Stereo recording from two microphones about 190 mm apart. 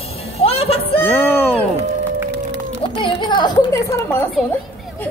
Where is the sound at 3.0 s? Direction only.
25° left (ahead or behind).